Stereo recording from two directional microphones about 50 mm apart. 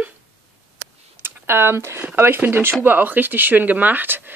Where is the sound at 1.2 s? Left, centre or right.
Right.